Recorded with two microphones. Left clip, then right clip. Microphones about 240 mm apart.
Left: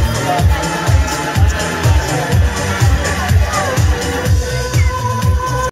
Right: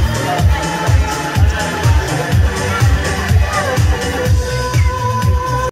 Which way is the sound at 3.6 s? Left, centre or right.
Centre.